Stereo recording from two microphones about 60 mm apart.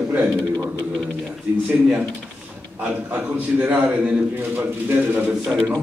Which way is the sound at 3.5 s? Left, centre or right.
Right.